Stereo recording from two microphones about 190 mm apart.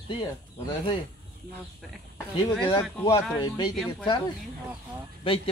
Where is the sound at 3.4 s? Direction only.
20° left (ahead or behind).